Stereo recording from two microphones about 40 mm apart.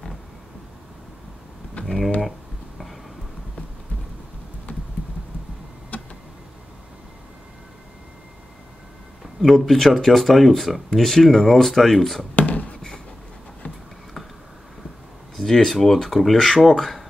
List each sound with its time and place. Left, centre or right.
1.8 s mechanisms: left
5.9 s tick-tock: left
9.4 s speech: centre
12.4 s a sound: left
15.3 s speech: centre